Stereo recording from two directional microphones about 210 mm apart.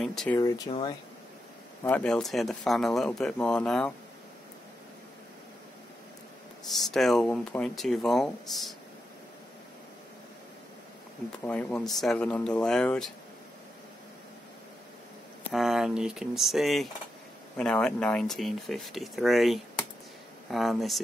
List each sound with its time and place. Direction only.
0.0 s speech: centre (ahead or behind)
0.4 s speech: 20° left (ahead or behind)
1.8 s speech: 10° left (ahead or behind)
6.7 s speech: centre (ahead or behind)
11.4 s speech: 5° left (ahead or behind)
15.5 s speech: centre (ahead or behind)